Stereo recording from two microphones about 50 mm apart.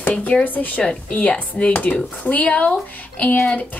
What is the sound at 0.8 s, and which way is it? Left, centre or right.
A woman's voice, left.